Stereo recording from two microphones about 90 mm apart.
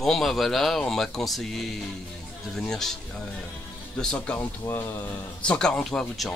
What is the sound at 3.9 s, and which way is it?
Speech, 10° left (ahead or behind).